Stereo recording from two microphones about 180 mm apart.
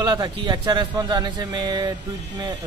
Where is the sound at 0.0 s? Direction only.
20° right (ahead or behind).